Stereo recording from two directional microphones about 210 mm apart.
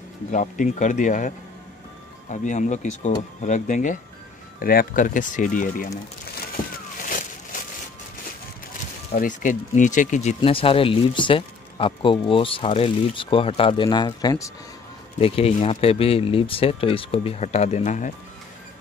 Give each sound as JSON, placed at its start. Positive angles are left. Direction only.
{"t": 0.3, "sound": "speech", "side_deg": 35}
{"t": 7.0, "sound": "a sound", "side_deg": 40}
{"t": 9.1, "sound": "speech", "side_deg": 40}